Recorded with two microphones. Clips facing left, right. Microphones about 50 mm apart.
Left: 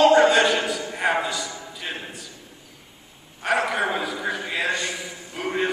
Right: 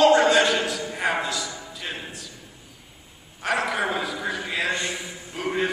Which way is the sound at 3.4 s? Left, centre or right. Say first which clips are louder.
Left 2 dB; centre.